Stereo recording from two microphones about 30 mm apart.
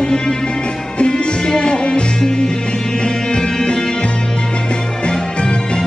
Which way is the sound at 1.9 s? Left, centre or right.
Left.